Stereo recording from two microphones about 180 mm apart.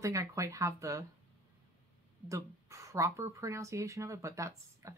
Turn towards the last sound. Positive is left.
turn(degrees=-15)  # may be behind; listen again after turning